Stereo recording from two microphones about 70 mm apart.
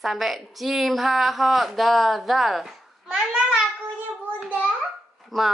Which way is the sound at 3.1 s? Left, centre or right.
Centre.